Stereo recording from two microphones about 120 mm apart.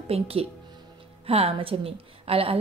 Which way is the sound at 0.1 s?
55° right (ahead or behind).